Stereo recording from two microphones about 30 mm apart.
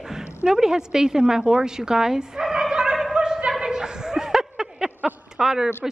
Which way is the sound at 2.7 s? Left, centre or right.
Right.